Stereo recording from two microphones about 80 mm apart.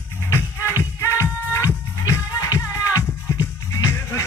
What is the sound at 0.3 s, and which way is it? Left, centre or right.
Music, left.